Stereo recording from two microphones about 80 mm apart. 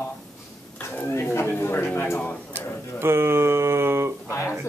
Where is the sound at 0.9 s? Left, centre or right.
Left.